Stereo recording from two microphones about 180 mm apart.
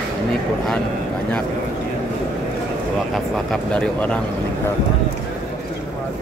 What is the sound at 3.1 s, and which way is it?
Speech, 5° left (ahead or behind).